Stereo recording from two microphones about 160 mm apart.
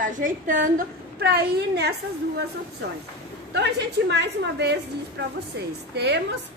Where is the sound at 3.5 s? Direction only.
90° right.